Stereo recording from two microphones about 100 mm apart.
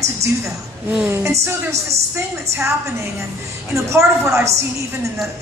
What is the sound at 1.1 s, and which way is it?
Music, 25° right (ahead or behind).